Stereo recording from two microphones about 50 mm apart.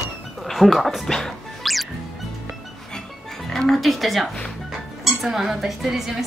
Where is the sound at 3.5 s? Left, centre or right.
Centre.